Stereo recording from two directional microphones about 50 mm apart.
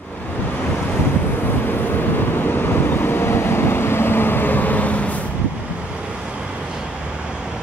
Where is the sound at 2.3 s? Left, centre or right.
Left.